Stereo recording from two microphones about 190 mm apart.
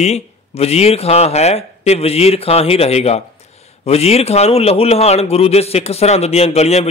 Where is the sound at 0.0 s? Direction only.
35° left (ahead or behind).